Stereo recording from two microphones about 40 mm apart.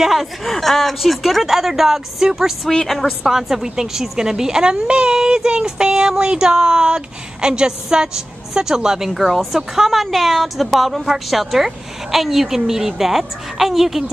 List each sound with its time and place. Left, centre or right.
0.0 s a woman's voice: centre
9.3 s a woman's voice: centre